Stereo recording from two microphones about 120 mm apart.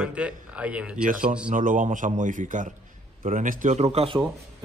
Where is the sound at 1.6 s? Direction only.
90° right; by 4.2 s 60° right (ahead or behind).